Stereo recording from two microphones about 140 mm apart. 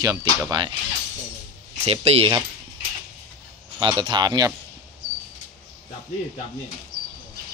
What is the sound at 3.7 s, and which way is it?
Speech, 35° right (ahead or behind).